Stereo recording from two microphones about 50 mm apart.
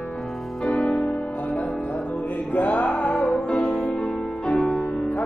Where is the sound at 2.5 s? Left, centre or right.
Left.